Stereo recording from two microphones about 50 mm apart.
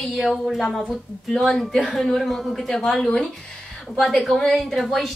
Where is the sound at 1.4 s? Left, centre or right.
Centre.